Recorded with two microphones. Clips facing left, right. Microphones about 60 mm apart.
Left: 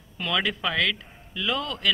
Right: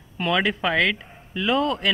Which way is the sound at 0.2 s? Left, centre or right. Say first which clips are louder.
Right 4 dB; right.